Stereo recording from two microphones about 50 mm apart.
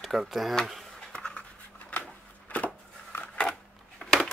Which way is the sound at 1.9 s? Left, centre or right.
Left.